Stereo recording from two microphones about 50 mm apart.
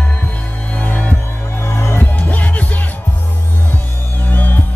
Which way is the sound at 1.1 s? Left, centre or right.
Left.